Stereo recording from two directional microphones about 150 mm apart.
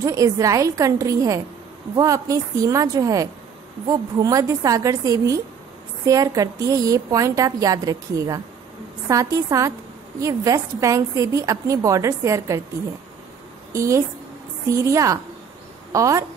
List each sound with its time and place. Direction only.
0.0 s a woman's voice: 20° right (ahead or behind)
13.7 s a woman's voice: 20° right (ahead or behind)